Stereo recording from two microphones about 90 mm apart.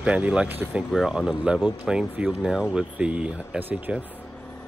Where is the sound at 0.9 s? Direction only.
5° right (ahead or behind).